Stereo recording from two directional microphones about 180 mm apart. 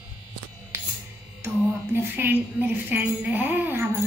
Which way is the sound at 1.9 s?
10° right (ahead or behind).